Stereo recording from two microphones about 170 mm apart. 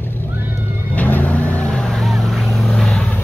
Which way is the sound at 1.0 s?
10° left (ahead or behind).